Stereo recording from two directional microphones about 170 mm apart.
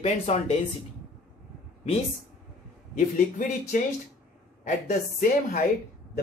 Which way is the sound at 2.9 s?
50° left (ahead or behind).